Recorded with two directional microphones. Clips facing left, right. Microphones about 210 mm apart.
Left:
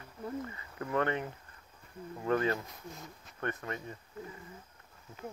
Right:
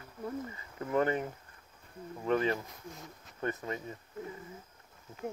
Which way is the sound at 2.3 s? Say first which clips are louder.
Right 1 dB; 15° right (ahead or behind).